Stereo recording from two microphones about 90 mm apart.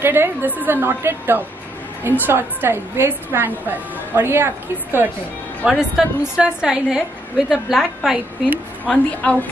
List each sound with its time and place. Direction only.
0.0 s a woman's voice: 25° right (ahead or behind)
5.7 s a woman's voice: 5° right (ahead or behind)
8.8 s a woman's voice: 15° left (ahead or behind)